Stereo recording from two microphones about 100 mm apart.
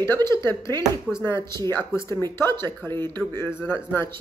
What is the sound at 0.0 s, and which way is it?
Speech, 25° left (ahead or behind).